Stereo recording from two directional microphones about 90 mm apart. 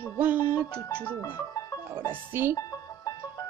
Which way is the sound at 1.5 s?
40° left (ahead or behind).